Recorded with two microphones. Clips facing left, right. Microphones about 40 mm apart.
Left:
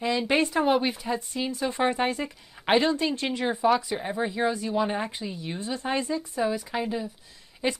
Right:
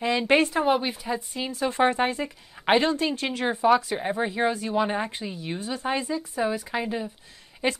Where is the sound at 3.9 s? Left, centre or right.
Centre.